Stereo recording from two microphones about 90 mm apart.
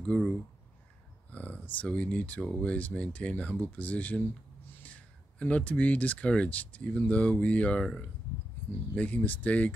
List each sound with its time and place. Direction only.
0.0 s speech: 10° left (ahead or behind)